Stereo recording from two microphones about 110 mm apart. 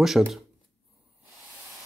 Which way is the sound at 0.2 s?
5° right (ahead or behind).